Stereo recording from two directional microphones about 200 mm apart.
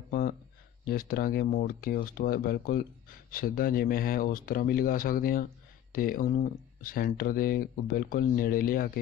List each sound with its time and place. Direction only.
0.8 s speech: 50° left (ahead or behind)